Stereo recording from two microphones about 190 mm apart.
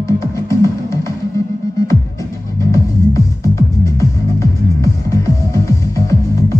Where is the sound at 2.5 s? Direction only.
15° left (ahead or behind).